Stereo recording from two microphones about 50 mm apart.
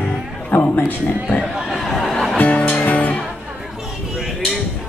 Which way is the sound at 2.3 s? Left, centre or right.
Left.